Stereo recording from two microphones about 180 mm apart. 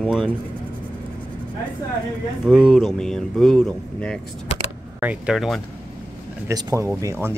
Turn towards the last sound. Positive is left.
turn(degrees=-15)  # may be behind; listen again after turning